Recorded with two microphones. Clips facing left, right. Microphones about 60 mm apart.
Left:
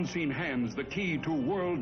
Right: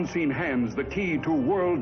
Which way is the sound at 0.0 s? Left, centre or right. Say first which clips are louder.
Right 6 dB; right.